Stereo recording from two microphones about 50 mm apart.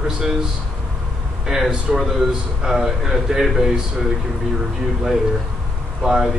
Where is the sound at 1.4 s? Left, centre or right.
Centre.